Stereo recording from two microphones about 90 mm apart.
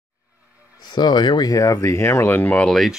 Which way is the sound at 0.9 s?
55° left (ahead or behind).